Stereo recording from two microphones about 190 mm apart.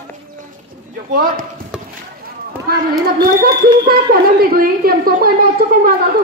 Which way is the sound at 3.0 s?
55° right (ahead or behind).